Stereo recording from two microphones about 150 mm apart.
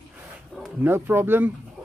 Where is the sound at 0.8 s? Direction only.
15° right (ahead or behind).